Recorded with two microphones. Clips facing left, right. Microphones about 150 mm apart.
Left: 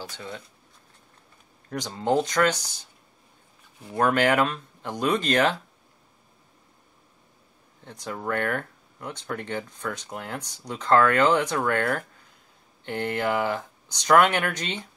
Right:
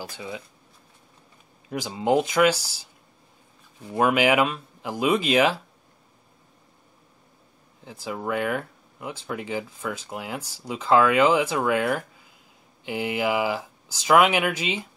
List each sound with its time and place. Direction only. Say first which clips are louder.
0.1 s speech: right 2 dB; 10° right (ahead or behind)
1.7 s speech: right 2 dB; 10° right (ahead or behind)
3.9 s speech: right 1 dB; 10° right (ahead or behind)
7.8 s speech: right 2 dB; 5° right (ahead or behind)